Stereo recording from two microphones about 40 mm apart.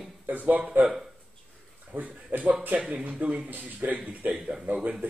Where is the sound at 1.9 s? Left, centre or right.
Right.